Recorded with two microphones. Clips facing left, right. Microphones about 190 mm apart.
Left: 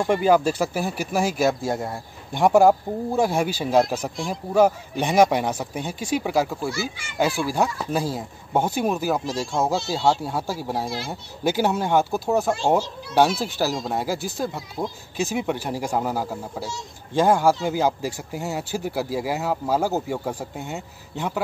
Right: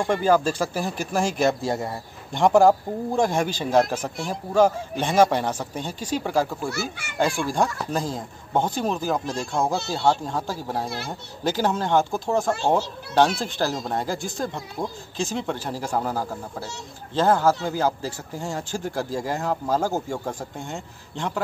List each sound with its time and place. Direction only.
0.0 s a man's voice: 10° left (ahead or behind)
6.7 s speech: 65° right (ahead or behind)
7.2 s a man's voice: 5° left (ahead or behind)